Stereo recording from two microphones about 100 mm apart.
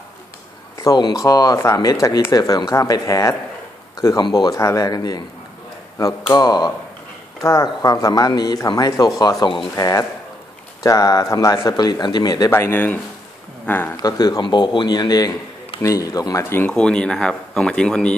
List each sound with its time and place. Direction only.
0.8 s a man's voice: 45° left (ahead or behind)
4.2 s a man's voice: 45° left (ahead or behind)
4.6 s speech: 35° left (ahead or behind)
6.3 s a man's voice: 45° left (ahead or behind)
7.4 s speech: 30° left (ahead or behind); by 9.7 s 50° left (ahead or behind)
9.8 s speech: 35° left (ahead or behind)
12.4 s speech: 25° left (ahead or behind)
13.9 s a man's voice: 40° left (ahead or behind)
16.4 s speech: 20° left (ahead or behind)
16.7 s speech: 10° left (ahead or behind)